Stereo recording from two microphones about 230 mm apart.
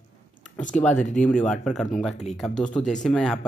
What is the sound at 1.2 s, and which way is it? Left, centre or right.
Speech, centre.